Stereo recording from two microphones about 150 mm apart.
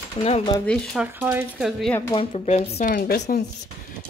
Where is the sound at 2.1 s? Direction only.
40° left (ahead or behind).